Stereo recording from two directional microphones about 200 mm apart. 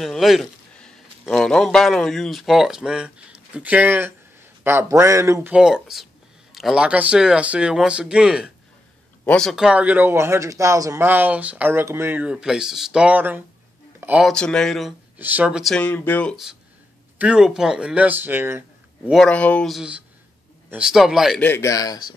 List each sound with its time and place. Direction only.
0.0 s a man's voice: centre (ahead or behind)
13.9 s a sound: 5° right (ahead or behind)
14.3 s speech: 5° left (ahead or behind)
19.0 s speech: centre (ahead or behind)
21.5 s speech: 15° left (ahead or behind)